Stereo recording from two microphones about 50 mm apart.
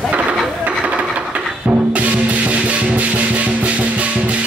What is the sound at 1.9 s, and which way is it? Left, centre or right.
Music, right.